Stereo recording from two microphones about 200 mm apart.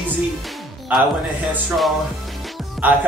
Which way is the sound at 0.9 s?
10° right (ahead or behind).